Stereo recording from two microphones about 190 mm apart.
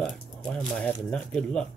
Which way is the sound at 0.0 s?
5° left (ahead or behind).